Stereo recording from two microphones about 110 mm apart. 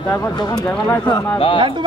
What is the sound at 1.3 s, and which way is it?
Speech, 55° left (ahead or behind).